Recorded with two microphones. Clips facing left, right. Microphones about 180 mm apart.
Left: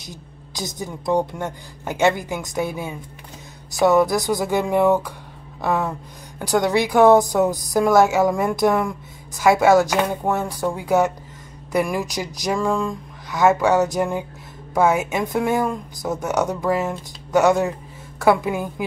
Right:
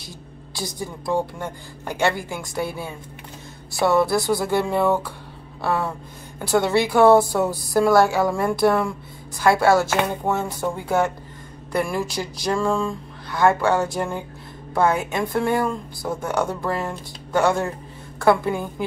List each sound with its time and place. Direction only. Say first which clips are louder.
0.6 s a woman's voice: left 1 dB; 20° left (ahead or behind)
10.6 s speech: left 4 dB; centre (ahead or behind)
11.8 s a woman's voice: even; 15° left (ahead or behind)